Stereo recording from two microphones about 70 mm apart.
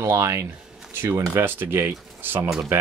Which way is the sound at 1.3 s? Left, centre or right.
Right.